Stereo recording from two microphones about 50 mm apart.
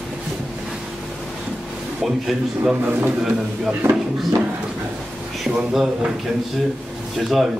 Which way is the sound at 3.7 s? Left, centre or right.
Right.